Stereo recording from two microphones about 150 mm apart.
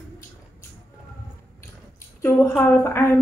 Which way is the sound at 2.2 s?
15° left (ahead or behind).